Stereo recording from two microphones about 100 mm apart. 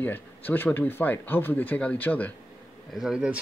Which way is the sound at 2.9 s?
5° right (ahead or behind).